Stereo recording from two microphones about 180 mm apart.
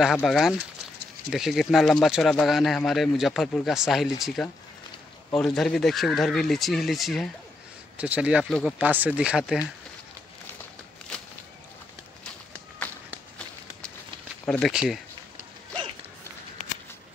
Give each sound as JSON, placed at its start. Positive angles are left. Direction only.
{"t": 0.0, "sound": "speech", "side_deg": 0}
{"t": 14.4, "sound": "speech", "side_deg": 5}